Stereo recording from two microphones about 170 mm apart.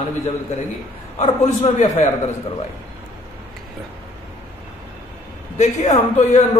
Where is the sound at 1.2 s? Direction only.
40° left (ahead or behind).